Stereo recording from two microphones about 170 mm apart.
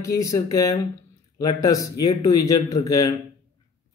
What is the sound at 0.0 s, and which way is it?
A man's voice, 20° left (ahead or behind).